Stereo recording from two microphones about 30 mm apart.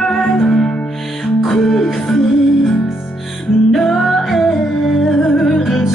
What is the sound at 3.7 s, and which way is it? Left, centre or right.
Music, centre.